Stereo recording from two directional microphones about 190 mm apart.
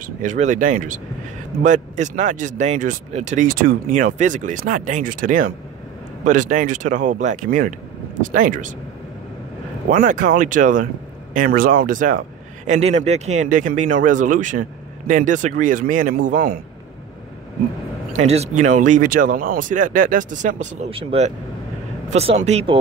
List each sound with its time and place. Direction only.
0.0 s a man's voice: 40° right (ahead or behind)
9.8 s a man's voice: 45° right (ahead or behind)
18.1 s speech: 35° right (ahead or behind)